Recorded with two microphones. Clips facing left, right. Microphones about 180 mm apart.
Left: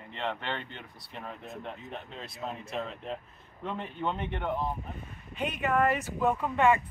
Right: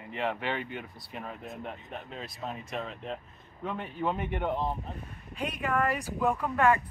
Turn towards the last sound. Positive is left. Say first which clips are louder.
# even
turn(degrees=0)  # may be behind; listen again after turning